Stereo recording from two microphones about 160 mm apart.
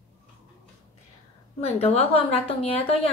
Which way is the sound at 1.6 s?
40° left (ahead or behind).